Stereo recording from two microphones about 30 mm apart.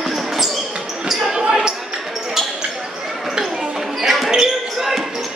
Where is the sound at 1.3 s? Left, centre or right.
Right.